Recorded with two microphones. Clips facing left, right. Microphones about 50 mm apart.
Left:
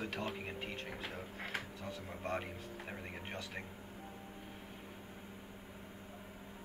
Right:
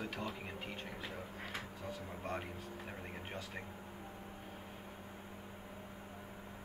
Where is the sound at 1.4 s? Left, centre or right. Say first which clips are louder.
Left 3 dB; left.